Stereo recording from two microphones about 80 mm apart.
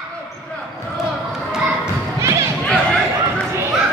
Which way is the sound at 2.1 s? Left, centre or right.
Right.